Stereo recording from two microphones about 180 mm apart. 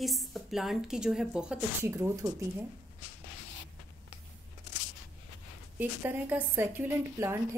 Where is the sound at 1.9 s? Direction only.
15° right (ahead or behind).